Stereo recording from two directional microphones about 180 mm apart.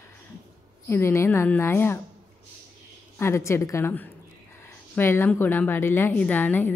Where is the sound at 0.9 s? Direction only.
15° left (ahead or behind).